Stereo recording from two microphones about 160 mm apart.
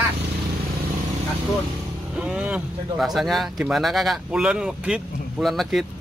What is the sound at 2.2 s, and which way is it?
Speech, 5° right (ahead or behind).